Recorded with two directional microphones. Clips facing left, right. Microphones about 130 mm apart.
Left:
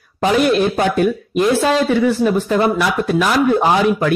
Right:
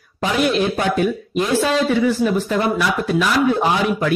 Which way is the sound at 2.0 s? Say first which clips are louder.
Left 2 dB; 55° left (ahead or behind).